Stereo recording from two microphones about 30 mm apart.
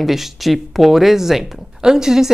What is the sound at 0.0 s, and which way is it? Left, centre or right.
Speech, centre.